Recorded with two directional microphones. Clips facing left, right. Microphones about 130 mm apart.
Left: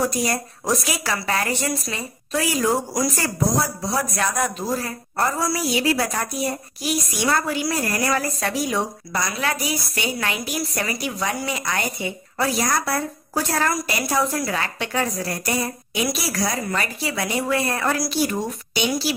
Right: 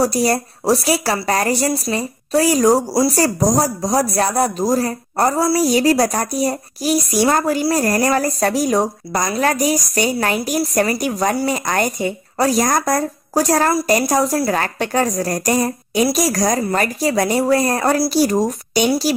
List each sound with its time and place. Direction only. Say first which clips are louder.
0.0 s a woman's voice: right 6 dB; 35° right (ahead or behind)